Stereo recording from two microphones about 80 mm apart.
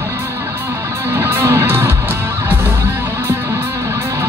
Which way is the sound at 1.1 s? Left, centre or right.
Right.